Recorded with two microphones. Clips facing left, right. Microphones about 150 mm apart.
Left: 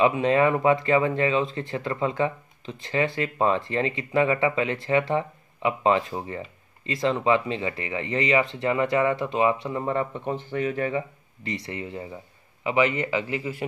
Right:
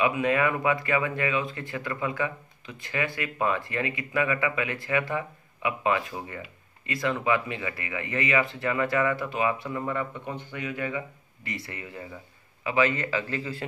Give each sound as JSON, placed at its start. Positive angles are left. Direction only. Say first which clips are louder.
{"t": 0.0, "sound": "a man's voice", "louder": "left 4 dB", "side_deg": 25}